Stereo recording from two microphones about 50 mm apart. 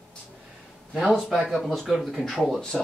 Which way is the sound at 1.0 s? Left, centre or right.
Centre.